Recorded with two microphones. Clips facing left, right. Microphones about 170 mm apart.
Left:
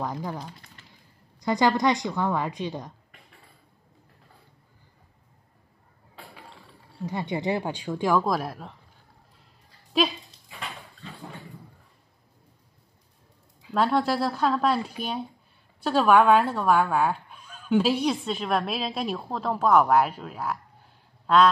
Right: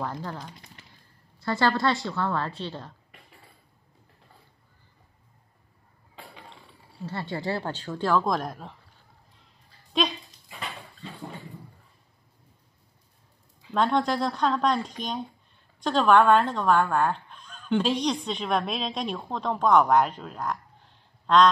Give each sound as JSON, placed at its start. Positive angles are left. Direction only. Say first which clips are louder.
{"t": 0.0, "sound": "speech", "louder": "left 2 dB", "side_deg": 15}
{"t": 6.1, "sound": "a sound", "louder": "even", "side_deg": 5}
{"t": 7.1, "sound": "speech", "louder": "left 3 dB", "side_deg": 15}
{"t": 9.9, "sound": "speech", "louder": "left 2 dB", "side_deg": 5}
{"t": 13.7, "sound": "speech", "louder": "left 1 dB", "side_deg": 5}